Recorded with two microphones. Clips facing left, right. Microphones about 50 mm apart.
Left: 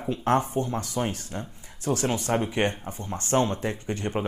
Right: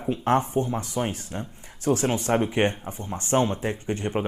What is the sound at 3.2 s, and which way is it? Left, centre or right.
Speech, centre.